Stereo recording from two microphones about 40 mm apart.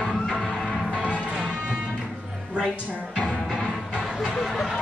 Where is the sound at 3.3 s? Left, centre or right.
Centre.